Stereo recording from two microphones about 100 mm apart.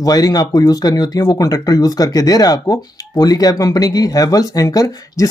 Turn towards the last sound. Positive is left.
turn(degrees=30)  # may be behind; listen again after turning